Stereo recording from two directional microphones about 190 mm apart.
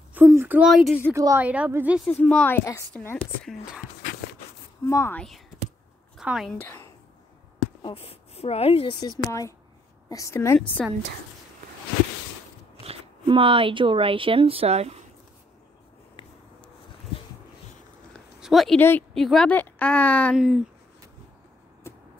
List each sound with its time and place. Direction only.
0.1 s a sound: 10° right (ahead or behind)
1.1 s a woman's voice: 15° right (ahead or behind)
2.0 s a woman's voice: 5° left (ahead or behind)
4.8 s a woman's voice: 15° left (ahead or behind)
6.1 s a woman's voice: centre (ahead or behind)
6.6 s speech: 10° left (ahead or behind)
7.8 s speech: 30° left (ahead or behind)
9.1 s a woman's voice: 15° left (ahead or behind)
12.8 s speech: 30° right (ahead or behind)
16.2 s a sound: 25° left (ahead or behind)
18.1 s a sound: centre (ahead or behind)
18.8 s a woman's voice: 10° left (ahead or behind)
20.3 s speech: 5° right (ahead or behind)